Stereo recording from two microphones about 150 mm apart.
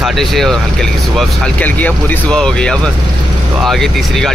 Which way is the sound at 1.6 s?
10° left (ahead or behind).